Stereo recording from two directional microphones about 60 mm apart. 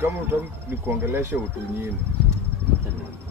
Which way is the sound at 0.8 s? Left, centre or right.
Right.